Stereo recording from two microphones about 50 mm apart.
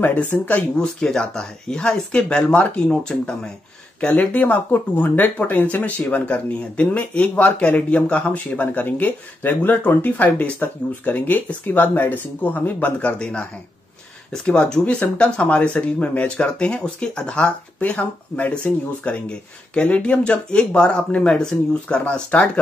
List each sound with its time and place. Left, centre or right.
0.0 s speech: left
0.7 s speech: centre
4.1 s speech: left
13.2 s speech: left
17.7 s speech: left